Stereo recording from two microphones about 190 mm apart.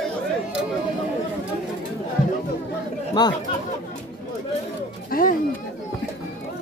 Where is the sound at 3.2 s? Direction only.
20° left (ahead or behind).